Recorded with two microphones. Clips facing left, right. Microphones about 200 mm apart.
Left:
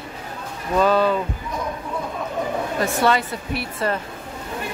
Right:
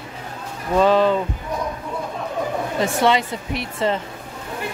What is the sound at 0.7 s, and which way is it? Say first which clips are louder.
Speech: right 2 dB; 20° right (ahead or behind).